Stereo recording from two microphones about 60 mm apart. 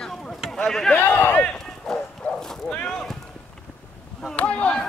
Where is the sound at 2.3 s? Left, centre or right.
Centre.